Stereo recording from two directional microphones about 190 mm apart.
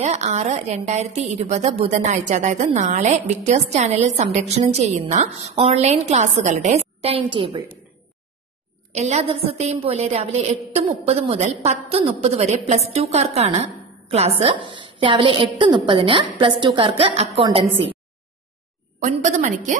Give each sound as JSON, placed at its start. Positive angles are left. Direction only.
{"t": 0.0, "sound": "a woman's voice", "side_deg": -35}
{"t": 8.9, "sound": "a woman's voice", "side_deg": -35}
{"t": 18.9, "sound": "a woman's voice", "side_deg": -40}